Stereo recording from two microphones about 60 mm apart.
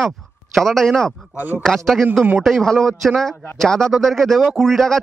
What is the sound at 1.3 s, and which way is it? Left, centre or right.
Speech, right.